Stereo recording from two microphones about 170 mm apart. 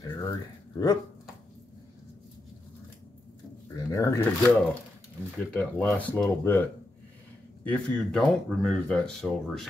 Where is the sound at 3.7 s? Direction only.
20° left (ahead or behind).